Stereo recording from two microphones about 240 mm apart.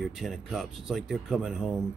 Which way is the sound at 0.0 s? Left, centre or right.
Centre.